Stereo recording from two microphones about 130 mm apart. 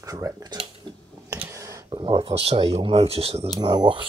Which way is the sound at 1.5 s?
25° right (ahead or behind).